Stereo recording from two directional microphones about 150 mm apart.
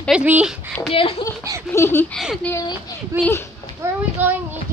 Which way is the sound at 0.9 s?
35° left (ahead or behind).